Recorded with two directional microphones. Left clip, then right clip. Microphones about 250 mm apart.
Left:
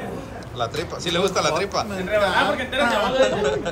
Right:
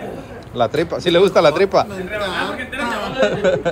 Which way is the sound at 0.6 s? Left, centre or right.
Right.